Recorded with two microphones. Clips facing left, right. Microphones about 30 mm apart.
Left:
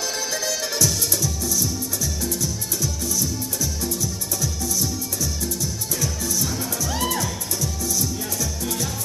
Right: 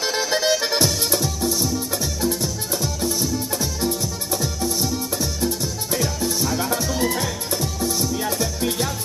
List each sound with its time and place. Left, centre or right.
0.3 s music: right